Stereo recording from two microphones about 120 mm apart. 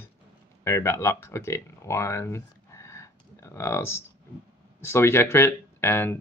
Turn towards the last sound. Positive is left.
turn(degrees=20)  # may be behind; listen again after turning